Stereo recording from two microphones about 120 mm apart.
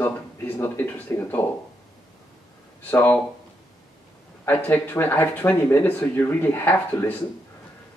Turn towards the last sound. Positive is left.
turn(degrees=15)  # may be behind; listen again after turning